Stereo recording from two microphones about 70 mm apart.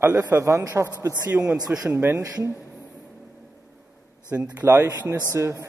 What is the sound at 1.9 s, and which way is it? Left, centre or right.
Speech, right.